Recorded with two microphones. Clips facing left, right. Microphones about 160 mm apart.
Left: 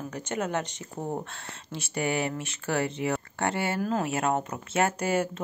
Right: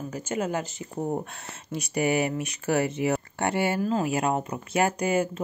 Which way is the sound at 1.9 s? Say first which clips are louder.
Right 4 dB; 20° right (ahead or behind).